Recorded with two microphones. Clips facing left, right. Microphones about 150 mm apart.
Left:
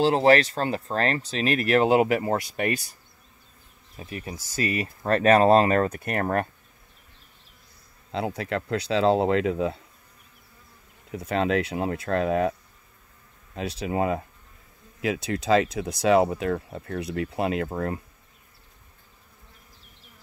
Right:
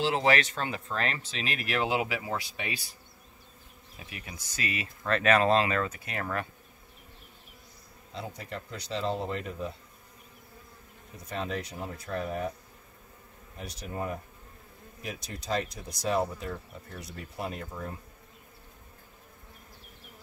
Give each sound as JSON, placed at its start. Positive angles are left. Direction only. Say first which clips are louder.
{"t": 0.0, "sound": "speech", "louder": "left 7 dB", "side_deg": 40}
{"t": 3.9, "sound": "speech", "louder": "left 9 dB", "side_deg": 35}
{"t": 8.1, "sound": "speech", "louder": "left 11 dB", "side_deg": 90}
{"t": 11.1, "sound": "speech", "louder": "left 11 dB", "side_deg": 90}
{"t": 13.6, "sound": "speech", "louder": "left 10 dB", "side_deg": 85}
{"t": 15.0, "sound": "speech", "louder": "left 13 dB", "side_deg": 80}